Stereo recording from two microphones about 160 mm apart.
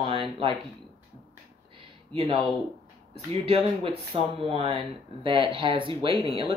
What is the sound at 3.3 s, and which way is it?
Speech, 40° right (ahead or behind).